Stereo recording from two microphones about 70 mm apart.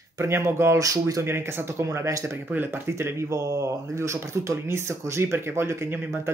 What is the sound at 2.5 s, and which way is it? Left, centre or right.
Speech, right.